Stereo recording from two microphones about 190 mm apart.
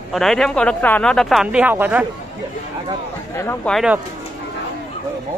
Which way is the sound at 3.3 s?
15° left (ahead or behind).